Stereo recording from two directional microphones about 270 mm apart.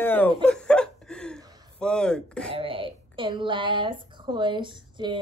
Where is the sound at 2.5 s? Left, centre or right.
Centre.